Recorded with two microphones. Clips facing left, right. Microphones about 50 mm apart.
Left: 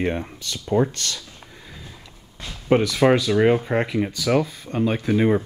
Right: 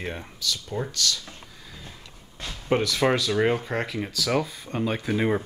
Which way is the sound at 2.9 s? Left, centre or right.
Centre.